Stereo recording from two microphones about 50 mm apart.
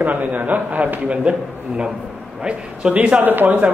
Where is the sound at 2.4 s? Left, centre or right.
Right.